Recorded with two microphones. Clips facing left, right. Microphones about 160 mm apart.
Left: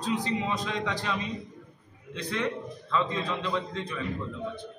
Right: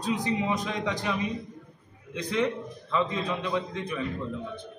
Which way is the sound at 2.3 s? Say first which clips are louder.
Right 4 dB; 15° right (ahead or behind).